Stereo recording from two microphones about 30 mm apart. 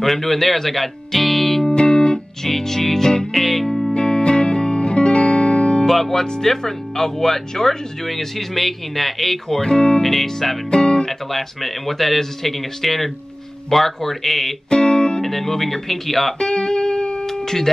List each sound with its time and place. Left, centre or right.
0.0 s speech: centre
1.8 s music: left
2.4 s speech: centre
3.3 s speech: centre
3.6 s music: centre
3.9 s music: left
5.9 s speech: centre
9.6 s speech: left
10.2 s speech: centre
10.7 s guitar: left
11.1 s speech: centre
14.7 s music: left
15.2 s speech: centre
16.3 s music: left